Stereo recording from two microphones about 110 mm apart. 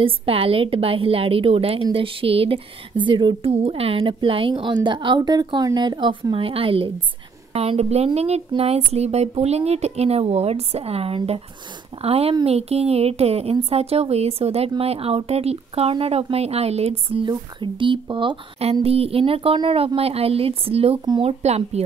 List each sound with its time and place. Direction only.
0.0 s a woman's voice: 60° right (ahead or behind)
3.5 s a woman's voice: 65° right (ahead or behind); by 6.1 s 45° right (ahead or behind)
6.3 s a woman's voice: 55° right (ahead or behind)
7.5 s a woman's voice: 70° right (ahead or behind)
17.3 s a woman's voice: 45° right (ahead or behind)
18.6 s a woman's voice: 70° right (ahead or behind)